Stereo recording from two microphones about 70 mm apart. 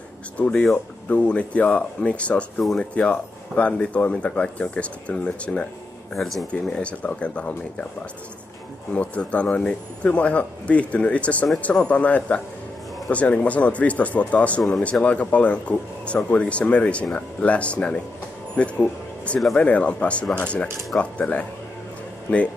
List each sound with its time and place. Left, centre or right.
0.4 s speech: centre
6.1 s speech: centre
6.6 s speech: centre
8.9 s speech: centre